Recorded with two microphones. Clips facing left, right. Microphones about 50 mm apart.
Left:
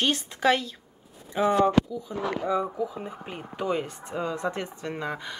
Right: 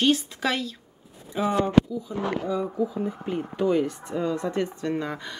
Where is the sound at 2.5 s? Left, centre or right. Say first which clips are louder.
Left 1 dB; left.